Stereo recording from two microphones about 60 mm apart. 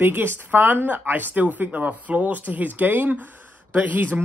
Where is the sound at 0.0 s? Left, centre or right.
Right.